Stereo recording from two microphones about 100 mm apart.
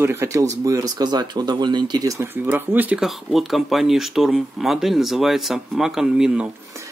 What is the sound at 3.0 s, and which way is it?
Speech, centre (ahead or behind).